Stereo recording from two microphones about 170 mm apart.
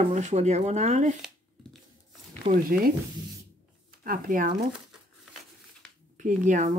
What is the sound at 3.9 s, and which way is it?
Speech, 55° right (ahead or behind).